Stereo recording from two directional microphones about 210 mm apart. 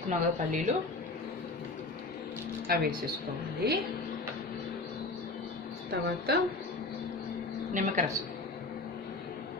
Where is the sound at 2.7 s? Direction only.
45° right (ahead or behind).